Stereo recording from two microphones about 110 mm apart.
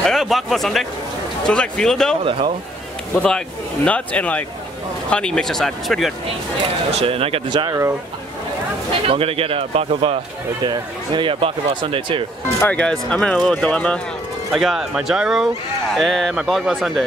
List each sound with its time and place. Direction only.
0.0 s speech: centre (ahead or behind)
2.2 s speech: 55° right (ahead or behind)
3.2 s speech: 10° left (ahead or behind)
6.9 s speech: 65° right (ahead or behind)
7.4 s speech: 40° right (ahead or behind)
9.0 s speech: 60° right (ahead or behind)
10.6 s speech: 45° right (ahead or behind)
12.5 s speech: 15° left (ahead or behind)
14.5 s speech: 5° right (ahead or behind)